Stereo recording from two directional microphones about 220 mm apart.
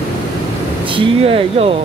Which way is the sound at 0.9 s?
25° right (ahead or behind).